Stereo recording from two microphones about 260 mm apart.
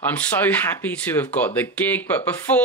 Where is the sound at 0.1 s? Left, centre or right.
Centre.